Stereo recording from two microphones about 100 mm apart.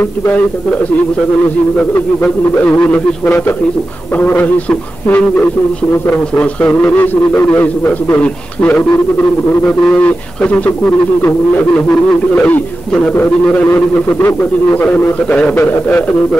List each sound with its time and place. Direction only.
1.8 s a man's voice: 15° left (ahead or behind)